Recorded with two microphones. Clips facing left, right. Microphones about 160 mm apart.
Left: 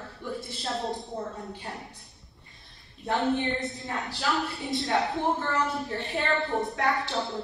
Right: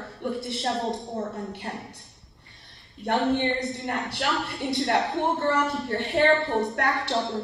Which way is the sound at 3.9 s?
70° right (ahead or behind).